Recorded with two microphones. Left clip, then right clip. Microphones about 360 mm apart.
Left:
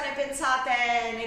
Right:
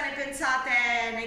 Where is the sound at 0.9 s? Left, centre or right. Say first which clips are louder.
Left 1 dB; left.